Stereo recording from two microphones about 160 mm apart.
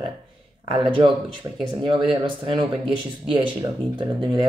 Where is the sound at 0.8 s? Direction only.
30° right (ahead or behind).